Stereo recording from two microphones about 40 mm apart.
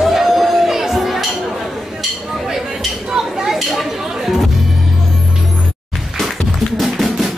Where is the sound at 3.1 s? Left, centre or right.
Centre.